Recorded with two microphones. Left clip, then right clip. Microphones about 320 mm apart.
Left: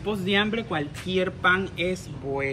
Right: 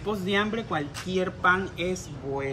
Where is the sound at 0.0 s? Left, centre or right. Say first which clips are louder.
Left 2 dB; centre.